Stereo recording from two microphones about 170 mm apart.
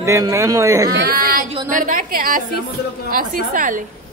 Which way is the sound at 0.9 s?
60° right (ahead or behind).